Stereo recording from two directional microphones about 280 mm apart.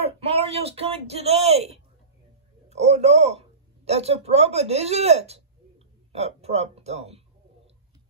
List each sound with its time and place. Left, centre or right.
0.0 s speech: right